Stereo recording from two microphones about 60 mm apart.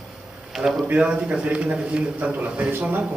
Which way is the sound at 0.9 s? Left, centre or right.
Right.